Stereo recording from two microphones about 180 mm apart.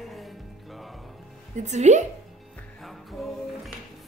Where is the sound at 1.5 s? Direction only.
40° right (ahead or behind).